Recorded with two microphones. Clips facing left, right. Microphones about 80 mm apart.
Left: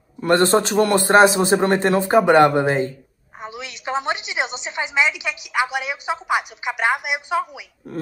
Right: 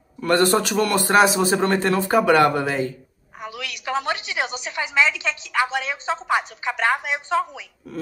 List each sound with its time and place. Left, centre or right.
0.2 s a man's voice: left